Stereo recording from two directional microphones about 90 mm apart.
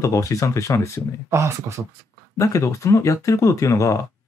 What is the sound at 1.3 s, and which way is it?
Speech, 30° right (ahead or behind).